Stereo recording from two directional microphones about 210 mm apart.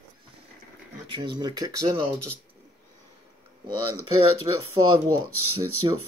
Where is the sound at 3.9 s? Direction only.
90° right.